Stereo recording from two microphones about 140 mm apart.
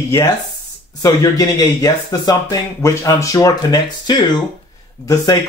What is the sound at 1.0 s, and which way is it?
Speech, 25° left (ahead or behind).